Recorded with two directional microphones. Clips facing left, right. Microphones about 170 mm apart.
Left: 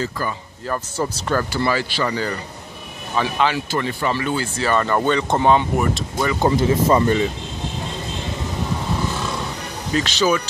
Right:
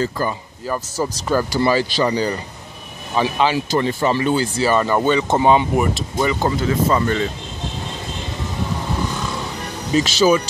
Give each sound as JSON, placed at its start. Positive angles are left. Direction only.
{"t": 0.7, "sound": "speech", "side_deg": -5}
{"t": 4.6, "sound": "speech", "side_deg": -10}
{"t": 6.4, "sound": "speech", "side_deg": 20}
{"t": 10.0, "sound": "speech", "side_deg": -10}